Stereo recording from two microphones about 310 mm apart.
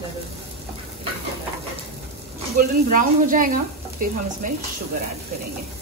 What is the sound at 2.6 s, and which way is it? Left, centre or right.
Speech, right.